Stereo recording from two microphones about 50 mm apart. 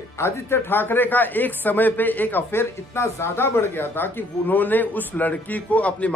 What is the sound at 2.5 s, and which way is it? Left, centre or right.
A woman's voice, left.